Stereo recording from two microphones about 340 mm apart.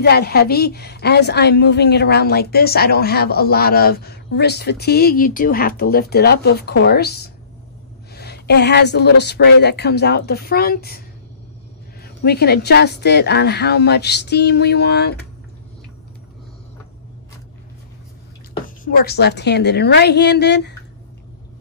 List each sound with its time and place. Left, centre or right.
0.0 s speech: left
12.0 s speech: left
18.5 s speech: left